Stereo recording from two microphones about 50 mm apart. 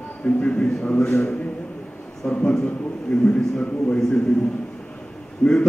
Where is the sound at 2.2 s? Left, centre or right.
Left.